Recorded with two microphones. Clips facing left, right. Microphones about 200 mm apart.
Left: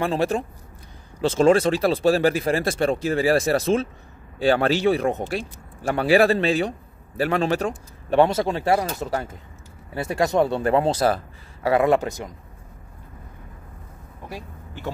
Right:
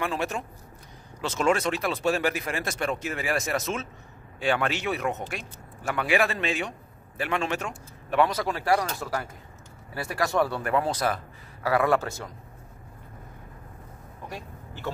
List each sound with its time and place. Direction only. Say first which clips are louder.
0.0 s speech: left 7 dB; 30° left (ahead or behind)